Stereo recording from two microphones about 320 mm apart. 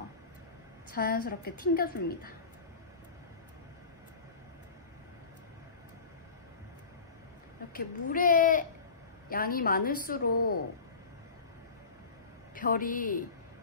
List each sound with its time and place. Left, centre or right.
0.9 s a woman's voice: left
7.7 s a woman's voice: left
12.5 s a woman's voice: left